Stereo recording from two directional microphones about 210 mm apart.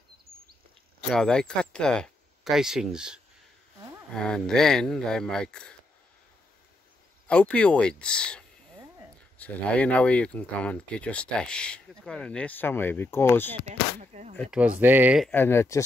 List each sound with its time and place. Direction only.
1.1 s speech: 5° left (ahead or behind)
7.2 s speech: 5° left (ahead or behind)
13.7 s speech: 35° right (ahead or behind)
14.3 s speech: 5° left (ahead or behind)
14.8 s speech: 10° right (ahead or behind)
15.2 s speech: 10° left (ahead or behind)